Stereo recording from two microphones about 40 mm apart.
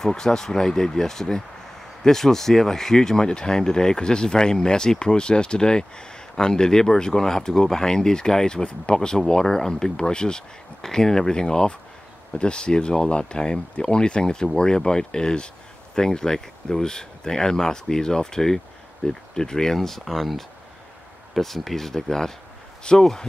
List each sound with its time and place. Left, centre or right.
0.0 s speech: centre
22.9 s speech: left